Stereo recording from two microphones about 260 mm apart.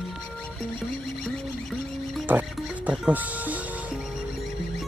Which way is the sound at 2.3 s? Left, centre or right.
Centre.